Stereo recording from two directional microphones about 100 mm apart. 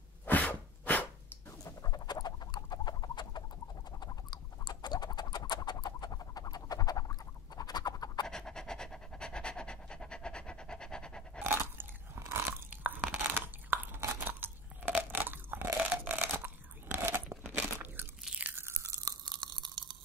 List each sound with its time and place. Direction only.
0.2 s a sound: 15° left (ahead or behind)
1.6 s rodents: 40° left (ahead or behind)
4.0 s a sound: 45° left (ahead or behind)
8.3 s pant: 5° left (ahead or behind)
11.4 s chewing: 25° right (ahead or behind)
13.3 s crunch: 20° right (ahead or behind)
19.2 s crunch: 45° right (ahead or behind)